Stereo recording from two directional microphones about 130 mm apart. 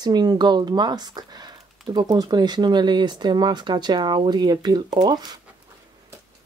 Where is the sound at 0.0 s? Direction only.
30° right (ahead or behind).